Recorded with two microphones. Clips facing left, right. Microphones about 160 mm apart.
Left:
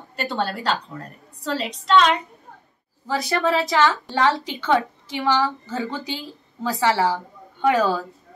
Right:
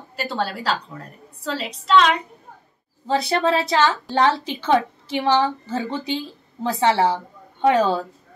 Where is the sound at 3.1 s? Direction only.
25° right (ahead or behind).